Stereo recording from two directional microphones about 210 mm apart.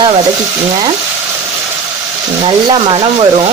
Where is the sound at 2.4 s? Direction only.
25° right (ahead or behind).